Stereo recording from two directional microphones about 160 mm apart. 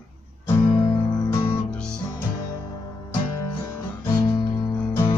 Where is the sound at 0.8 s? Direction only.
25° left (ahead or behind).